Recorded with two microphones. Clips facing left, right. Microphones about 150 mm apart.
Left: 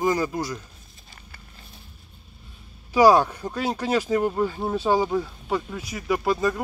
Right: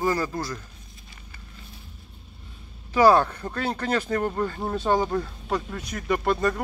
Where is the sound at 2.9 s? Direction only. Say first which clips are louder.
Left 1 dB; 10° left (ahead or behind).